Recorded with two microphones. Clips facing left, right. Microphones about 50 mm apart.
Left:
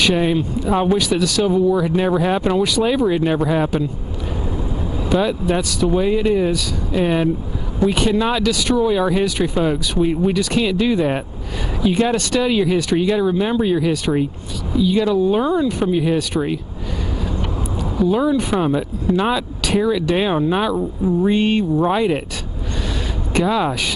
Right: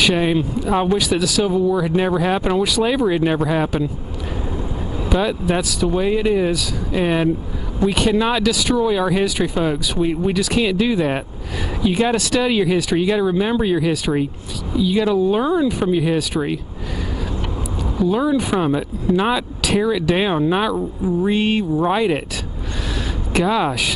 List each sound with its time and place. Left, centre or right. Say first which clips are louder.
0.0 s speech: even; centre
5.0 s speech: left 1 dB; centre
17.9 s speech: left 1 dB; centre
23.3 s speech: even; centre